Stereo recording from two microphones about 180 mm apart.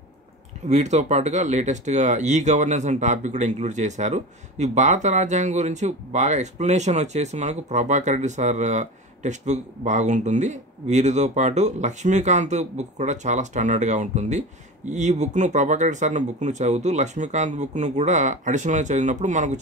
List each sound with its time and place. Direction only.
0.7 s speech: 40° right (ahead or behind)